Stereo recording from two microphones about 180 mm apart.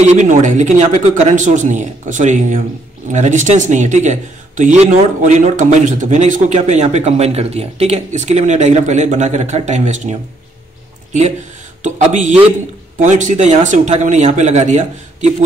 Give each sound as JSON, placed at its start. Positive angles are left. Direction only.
{"t": 0.0, "sound": "a man's voice", "side_deg": -40}
{"t": 11.8, "sound": "a man's voice", "side_deg": -45}